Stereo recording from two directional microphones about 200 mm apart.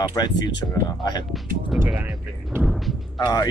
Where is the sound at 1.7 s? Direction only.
10° right (ahead or behind).